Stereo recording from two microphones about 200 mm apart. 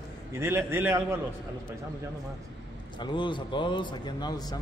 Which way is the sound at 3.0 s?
25° left (ahead or behind).